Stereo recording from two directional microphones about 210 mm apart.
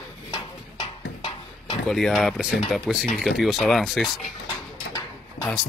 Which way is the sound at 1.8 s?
Centre (ahead or behind).